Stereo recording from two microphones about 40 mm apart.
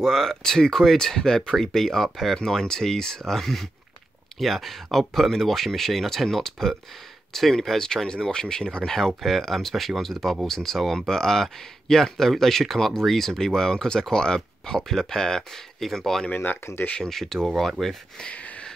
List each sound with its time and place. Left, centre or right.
0.0 s speech: centre
16.6 s speech: left
17.0 s speech: centre
18.3 s a sound: left